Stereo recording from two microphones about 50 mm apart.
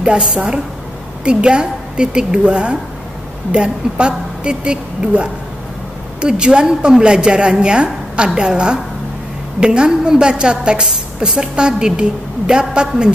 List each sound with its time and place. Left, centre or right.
0.0 s a woman's voice: centre